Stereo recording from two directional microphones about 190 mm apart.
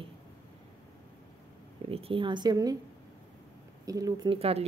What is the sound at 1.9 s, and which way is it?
Speech, 30° right (ahead or behind).